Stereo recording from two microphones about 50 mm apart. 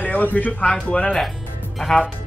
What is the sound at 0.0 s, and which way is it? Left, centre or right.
Speech, left.